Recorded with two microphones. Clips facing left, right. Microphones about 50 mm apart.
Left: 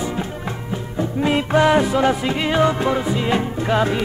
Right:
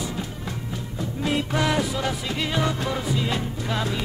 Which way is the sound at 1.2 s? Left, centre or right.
Left.